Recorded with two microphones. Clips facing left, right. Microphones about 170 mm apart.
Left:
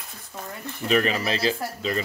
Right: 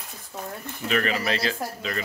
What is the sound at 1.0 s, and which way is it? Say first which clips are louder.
Speech: left 2 dB; 25° left (ahead or behind).